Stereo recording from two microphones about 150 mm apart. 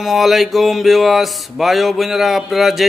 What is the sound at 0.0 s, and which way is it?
A man's voice, centre (ahead or behind).